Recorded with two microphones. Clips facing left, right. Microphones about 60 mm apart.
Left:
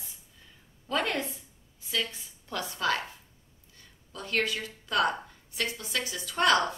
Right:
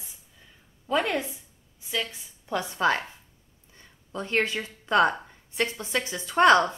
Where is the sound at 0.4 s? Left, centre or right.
Centre.